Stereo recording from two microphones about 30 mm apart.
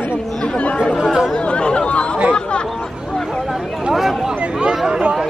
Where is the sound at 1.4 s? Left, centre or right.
Left.